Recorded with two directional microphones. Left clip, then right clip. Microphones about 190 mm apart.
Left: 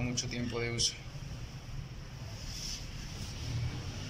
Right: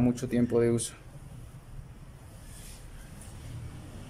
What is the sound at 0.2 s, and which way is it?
Speech, 65° right (ahead or behind).